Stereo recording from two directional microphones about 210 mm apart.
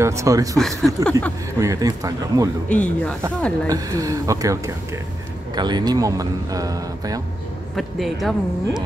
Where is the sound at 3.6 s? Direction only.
15° right (ahead or behind).